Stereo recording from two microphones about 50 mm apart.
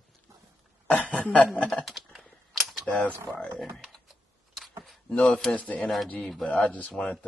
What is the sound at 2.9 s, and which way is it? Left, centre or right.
Speech, left.